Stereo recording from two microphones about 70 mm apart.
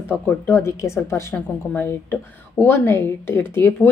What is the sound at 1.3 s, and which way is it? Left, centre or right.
A woman's voice, left.